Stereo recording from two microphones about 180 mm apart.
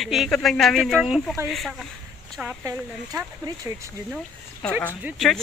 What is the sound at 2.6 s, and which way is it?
Speech, 15° right (ahead or behind).